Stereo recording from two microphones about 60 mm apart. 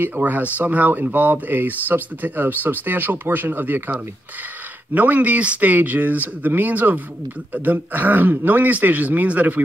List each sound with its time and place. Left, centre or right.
0.0 s speech: right
4.9 s speech: right